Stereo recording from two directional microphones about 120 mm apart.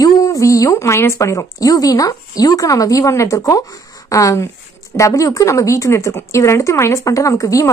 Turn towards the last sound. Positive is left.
turn(degrees=25)  # may be behind; listen again after turning